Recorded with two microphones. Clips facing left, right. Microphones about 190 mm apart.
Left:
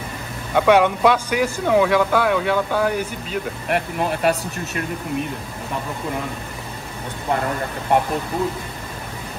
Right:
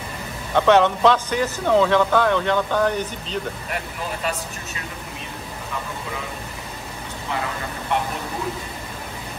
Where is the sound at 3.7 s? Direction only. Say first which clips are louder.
Left 11 dB; 60° left (ahead or behind).